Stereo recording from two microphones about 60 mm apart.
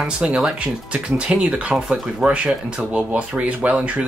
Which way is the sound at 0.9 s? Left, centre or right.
Centre.